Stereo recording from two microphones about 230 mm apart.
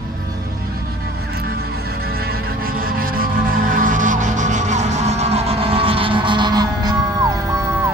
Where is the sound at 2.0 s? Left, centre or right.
Right.